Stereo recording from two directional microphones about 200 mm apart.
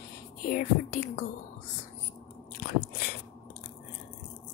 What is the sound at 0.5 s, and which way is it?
Speech, 40° left (ahead or behind).